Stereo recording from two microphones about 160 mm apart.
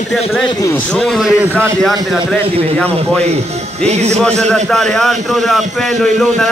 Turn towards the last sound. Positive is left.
turn(degrees=0)  # may be behind; listen again after turning